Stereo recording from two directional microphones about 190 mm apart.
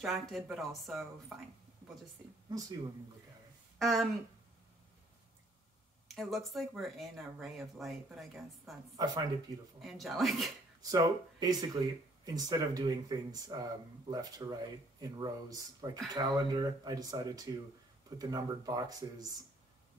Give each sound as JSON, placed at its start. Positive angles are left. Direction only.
{"t": 0.0, "sound": "speech", "side_deg": 0}
{"t": 3.7, "sound": "speech", "side_deg": 0}
{"t": 6.0, "sound": "speech", "side_deg": 0}
{"t": 8.9, "sound": "speech", "side_deg": -20}
{"t": 9.8, "sound": "speech", "side_deg": 0}
{"t": 10.8, "sound": "speech", "side_deg": -20}